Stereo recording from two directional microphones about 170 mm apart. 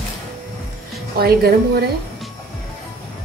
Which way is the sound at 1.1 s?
65° right (ahead or behind).